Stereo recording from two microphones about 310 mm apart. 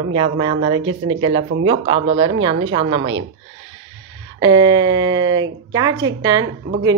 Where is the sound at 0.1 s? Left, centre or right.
Centre.